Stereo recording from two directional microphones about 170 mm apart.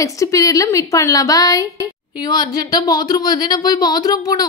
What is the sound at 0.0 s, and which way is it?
Speech, 20° left (ahead or behind).